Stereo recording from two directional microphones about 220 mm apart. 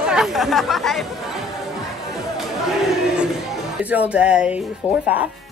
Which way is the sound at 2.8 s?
Centre (ahead or behind).